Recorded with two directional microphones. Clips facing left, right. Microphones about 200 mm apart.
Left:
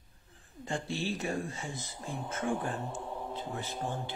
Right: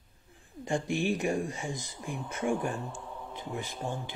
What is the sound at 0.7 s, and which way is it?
Speech, 15° right (ahead or behind).